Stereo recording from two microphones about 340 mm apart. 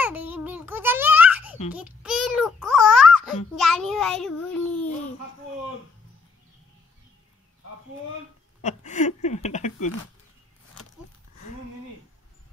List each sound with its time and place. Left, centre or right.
0.0 s babbling: centre
1.7 s a sound: centre
3.5 s a child's voice: centre
8.6 s speech: left